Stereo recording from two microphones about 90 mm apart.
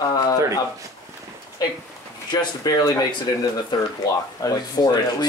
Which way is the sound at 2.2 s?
45° left (ahead or behind).